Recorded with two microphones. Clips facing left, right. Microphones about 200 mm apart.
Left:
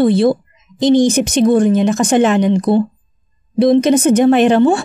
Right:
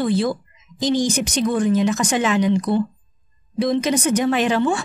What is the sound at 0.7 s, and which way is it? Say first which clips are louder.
Speech: left 9 dB; 60° left (ahead or behind).